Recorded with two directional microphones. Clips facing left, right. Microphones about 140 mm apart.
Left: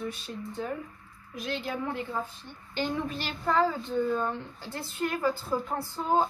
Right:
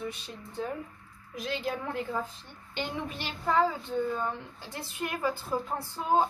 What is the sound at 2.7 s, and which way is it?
A woman's voice, 20° right (ahead or behind).